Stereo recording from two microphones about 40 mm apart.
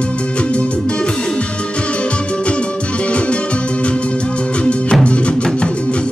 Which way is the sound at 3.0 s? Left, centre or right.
Left.